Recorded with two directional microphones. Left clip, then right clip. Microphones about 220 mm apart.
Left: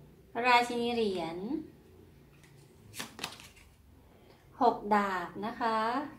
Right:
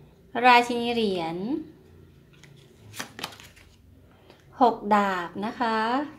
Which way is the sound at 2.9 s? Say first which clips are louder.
Right 5 dB; 15° right (ahead or behind).